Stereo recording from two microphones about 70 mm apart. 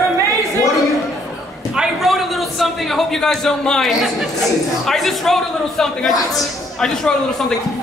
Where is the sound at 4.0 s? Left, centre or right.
Centre.